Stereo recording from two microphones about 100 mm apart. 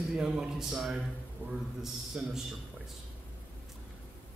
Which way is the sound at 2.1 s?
5° right (ahead or behind).